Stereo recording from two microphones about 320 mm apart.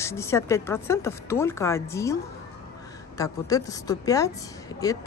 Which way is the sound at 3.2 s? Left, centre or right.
Centre.